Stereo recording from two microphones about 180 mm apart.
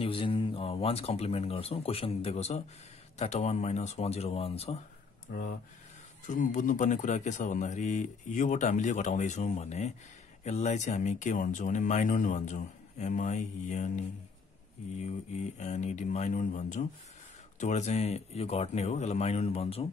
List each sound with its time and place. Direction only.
0.0 s speech: 30° left (ahead or behind)
5.3 s speech: 55° left (ahead or behind)
6.2 s speech: 45° left (ahead or behind)
15.5 s speech: 40° left (ahead or behind)